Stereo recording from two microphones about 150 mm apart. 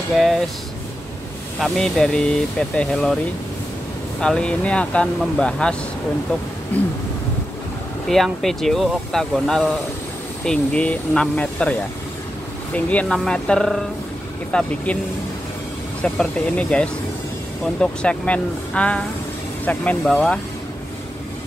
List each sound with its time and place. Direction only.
0.1 s speech: centre (ahead or behind)
1.6 s speech: 5° left (ahead or behind)
4.2 s speech: 5° left (ahead or behind)
8.1 s speech: centre (ahead or behind)
12.7 s speech: 10° left (ahead or behind)
16.0 s speech: 5° left (ahead or behind)